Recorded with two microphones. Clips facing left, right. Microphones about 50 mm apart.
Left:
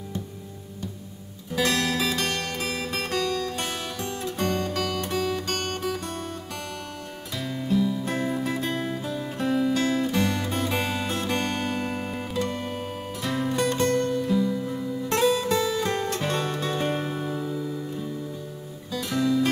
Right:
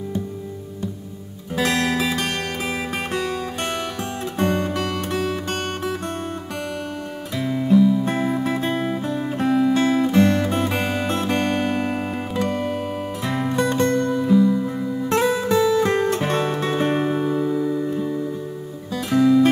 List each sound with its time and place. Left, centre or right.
1.5 s music: right
7.3 s music: right
9.5 s music: centre
9.8 s music: right
10.7 s music: centre
15.5 s music: centre
15.8 s music: right